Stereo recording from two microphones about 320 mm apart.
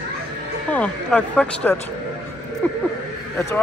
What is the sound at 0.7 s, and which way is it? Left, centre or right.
Speech, centre.